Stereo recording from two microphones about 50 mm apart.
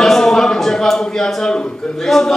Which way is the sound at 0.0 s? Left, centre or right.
Centre.